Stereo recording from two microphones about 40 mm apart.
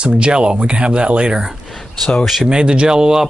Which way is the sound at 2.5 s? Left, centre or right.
Right.